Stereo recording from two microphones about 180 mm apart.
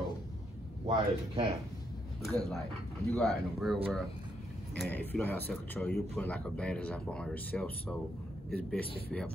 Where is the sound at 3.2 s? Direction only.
Centre (ahead or behind).